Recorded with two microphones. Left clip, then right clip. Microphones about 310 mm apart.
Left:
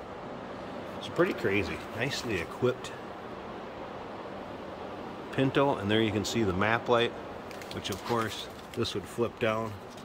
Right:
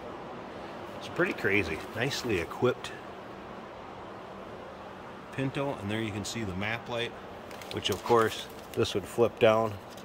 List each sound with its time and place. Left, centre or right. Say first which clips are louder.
1.1 s speech: even; centre
5.3 s speech: left 7 dB; centre
7.8 s speech: right 7 dB; centre